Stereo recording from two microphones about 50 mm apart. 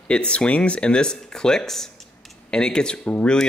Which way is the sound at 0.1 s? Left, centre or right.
Left.